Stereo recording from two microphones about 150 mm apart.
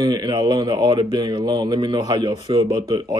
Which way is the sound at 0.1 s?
30° right (ahead or behind).